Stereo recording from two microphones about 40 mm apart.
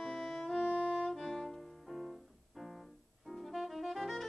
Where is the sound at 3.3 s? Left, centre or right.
Centre.